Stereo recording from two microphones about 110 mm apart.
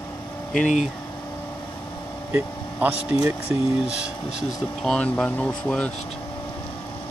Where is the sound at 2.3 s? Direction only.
15° right (ahead or behind).